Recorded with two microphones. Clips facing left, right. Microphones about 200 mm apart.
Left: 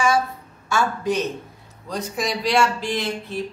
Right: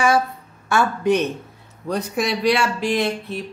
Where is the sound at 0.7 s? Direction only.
60° right (ahead or behind).